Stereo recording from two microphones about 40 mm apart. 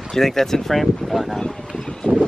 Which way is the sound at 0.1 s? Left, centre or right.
Centre.